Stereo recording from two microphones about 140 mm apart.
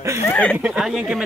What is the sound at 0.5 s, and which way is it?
Speech, 5° right (ahead or behind).